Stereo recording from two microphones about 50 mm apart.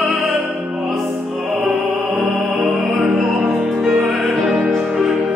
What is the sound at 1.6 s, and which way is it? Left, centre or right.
Music, centre.